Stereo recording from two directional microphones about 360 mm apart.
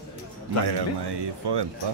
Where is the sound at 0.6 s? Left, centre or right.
Right.